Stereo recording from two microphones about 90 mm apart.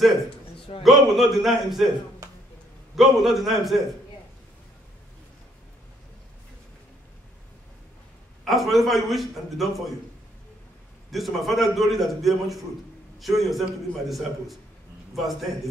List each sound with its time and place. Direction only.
0.8 s a man's voice: centre (ahead or behind)
2.2 s a sound: 40° right (ahead or behind)
3.0 s a man's voice: centre (ahead or behind)
8.5 s a man's voice: centre (ahead or behind)
11.1 s a man's voice: centre (ahead or behind)